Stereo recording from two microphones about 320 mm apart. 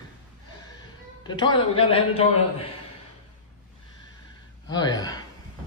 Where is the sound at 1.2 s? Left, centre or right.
Centre.